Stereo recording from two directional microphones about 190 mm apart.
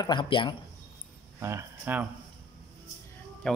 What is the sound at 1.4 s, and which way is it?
Speech, 10° right (ahead or behind).